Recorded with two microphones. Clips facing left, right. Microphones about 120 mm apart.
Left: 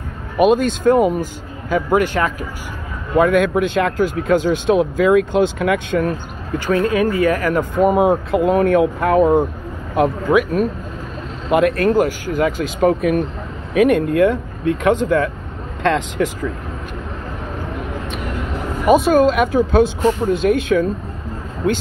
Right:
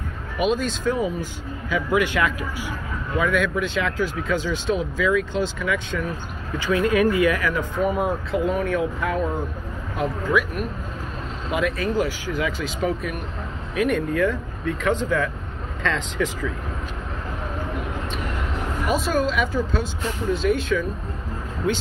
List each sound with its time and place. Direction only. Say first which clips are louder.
0.4 s speech: left 9 dB; 55° left (ahead or behind)
1.2 s speech: left 4 dB; 45° left (ahead or behind)
3.2 s speech: left 8 dB; 50° left (ahead or behind)
6.6 s speech: left 3 dB; 40° left (ahead or behind)
7.8 s speech: left 9 dB; 90° left
8.3 s speech: left 8 dB; 65° left (ahead or behind)
11.5 s speech: left 9 dB; 60° left (ahead or behind)
18.9 s speech: left 11 dB; 60° left (ahead or behind)